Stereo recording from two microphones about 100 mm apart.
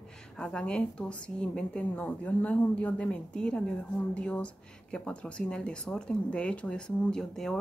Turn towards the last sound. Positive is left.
turn(degrees=5)  # may be behind; listen again after turning